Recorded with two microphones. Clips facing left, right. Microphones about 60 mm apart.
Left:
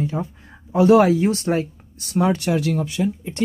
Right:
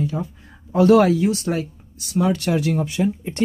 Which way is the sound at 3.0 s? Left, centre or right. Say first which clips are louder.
Right 1 dB; right.